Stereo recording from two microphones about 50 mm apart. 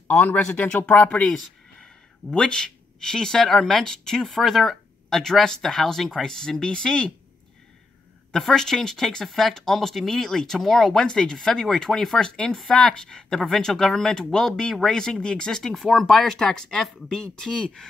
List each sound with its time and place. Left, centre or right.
0.5 s speech: left
2.3 s speech: centre
8.3 s speech: centre